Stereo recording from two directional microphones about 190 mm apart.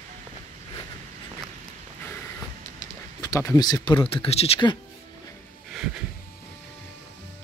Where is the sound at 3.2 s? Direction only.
15° left (ahead or behind).